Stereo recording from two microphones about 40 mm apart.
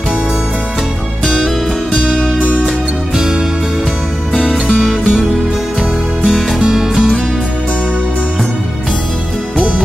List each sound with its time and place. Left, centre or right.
4.4 s music: centre
6.2 s music: centre